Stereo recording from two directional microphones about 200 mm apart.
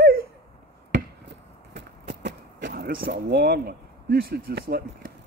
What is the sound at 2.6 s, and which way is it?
Speech, 50° right (ahead or behind).